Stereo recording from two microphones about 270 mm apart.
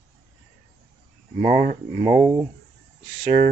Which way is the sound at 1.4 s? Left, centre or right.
Right.